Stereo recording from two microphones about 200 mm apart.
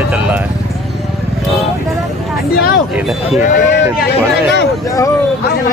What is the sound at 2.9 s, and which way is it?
Speech, centre (ahead or behind).